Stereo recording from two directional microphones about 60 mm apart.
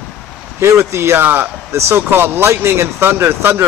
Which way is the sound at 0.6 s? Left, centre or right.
Right.